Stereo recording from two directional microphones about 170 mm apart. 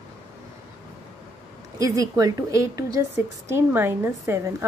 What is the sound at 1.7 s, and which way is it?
A woman's voice, 20° right (ahead or behind).